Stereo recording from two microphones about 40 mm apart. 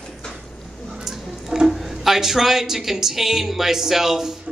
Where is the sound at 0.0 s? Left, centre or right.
Centre.